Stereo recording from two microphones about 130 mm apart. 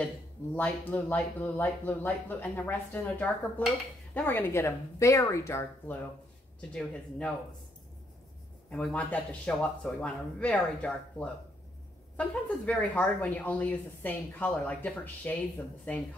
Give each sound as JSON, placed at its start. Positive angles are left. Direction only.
{"t": 0.6, "sound": "speech", "side_deg": 15}
{"t": 6.7, "sound": "speech", "side_deg": 10}
{"t": 8.6, "sound": "speech", "side_deg": 10}